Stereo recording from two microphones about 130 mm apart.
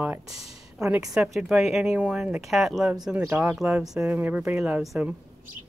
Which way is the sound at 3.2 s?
15° right (ahead or behind).